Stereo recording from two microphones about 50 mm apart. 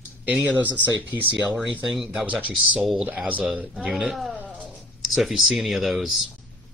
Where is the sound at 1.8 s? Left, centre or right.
Centre.